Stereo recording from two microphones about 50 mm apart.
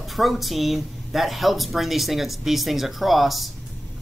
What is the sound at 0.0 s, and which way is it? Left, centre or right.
Speech, centre.